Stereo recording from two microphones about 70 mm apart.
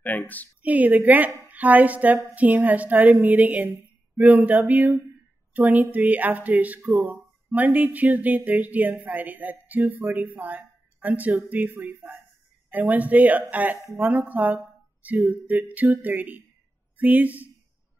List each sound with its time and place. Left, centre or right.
0.0 s a woman's voice: left
0.6 s speech: right